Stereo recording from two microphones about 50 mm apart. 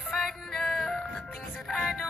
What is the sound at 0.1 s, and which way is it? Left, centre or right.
Music, centre.